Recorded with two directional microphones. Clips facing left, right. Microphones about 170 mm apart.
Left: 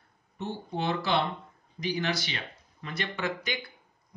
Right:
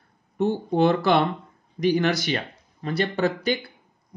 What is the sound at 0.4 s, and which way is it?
Speech, 55° right (ahead or behind).